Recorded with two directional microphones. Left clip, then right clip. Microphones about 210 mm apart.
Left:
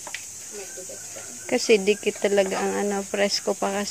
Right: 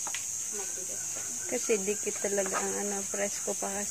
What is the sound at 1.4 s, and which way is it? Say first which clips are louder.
Speech: left 11 dB; 45° left (ahead or behind).